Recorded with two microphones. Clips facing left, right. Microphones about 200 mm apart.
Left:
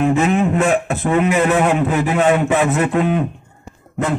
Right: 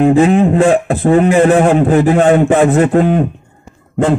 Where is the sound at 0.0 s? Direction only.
30° right (ahead or behind).